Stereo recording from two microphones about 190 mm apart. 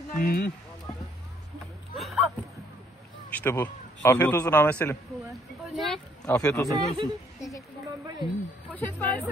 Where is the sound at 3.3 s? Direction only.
10° left (ahead or behind).